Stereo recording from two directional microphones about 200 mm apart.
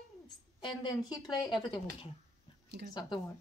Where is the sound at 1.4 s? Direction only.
20° left (ahead or behind).